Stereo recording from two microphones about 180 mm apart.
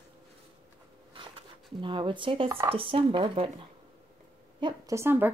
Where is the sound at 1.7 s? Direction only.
25° right (ahead or behind).